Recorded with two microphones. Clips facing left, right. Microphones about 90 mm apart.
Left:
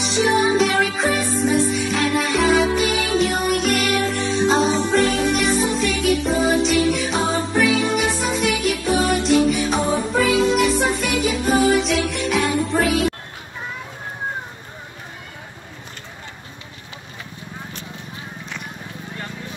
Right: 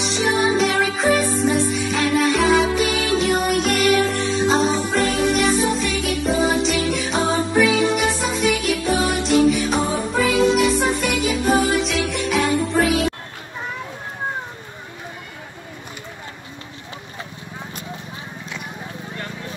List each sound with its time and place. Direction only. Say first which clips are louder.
0.0 s music: left 1 dB; centre (ahead or behind)